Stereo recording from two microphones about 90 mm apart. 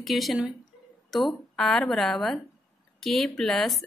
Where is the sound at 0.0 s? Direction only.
Centre (ahead or behind).